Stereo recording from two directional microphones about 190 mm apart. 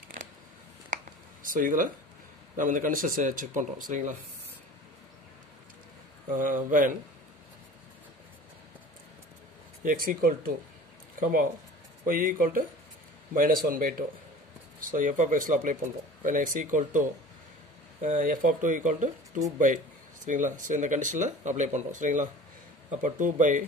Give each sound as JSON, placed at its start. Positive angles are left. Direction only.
{"t": 1.4, "sound": "speech", "side_deg": -45}
{"t": 6.3, "sound": "speech", "side_deg": -45}
{"t": 9.8, "sound": "speech", "side_deg": -50}
{"t": 12.1, "sound": "speech", "side_deg": -45}